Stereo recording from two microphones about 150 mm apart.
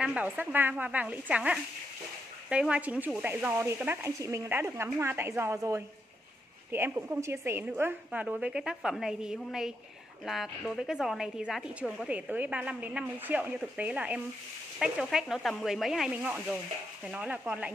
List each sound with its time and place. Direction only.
0.0 s a woman's voice: 10° right (ahead or behind)